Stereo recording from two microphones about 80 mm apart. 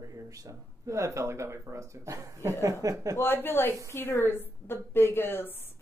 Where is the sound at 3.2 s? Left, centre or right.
Left.